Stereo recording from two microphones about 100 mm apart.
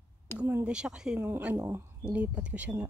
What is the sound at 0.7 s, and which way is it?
Speech, 10° right (ahead or behind).